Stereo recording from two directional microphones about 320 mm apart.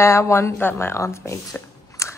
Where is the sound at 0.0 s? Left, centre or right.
Centre.